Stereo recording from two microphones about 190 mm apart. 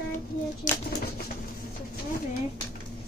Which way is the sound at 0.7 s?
40° left (ahead or behind).